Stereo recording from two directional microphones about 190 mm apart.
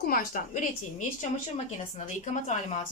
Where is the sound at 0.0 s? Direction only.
45° left (ahead or behind).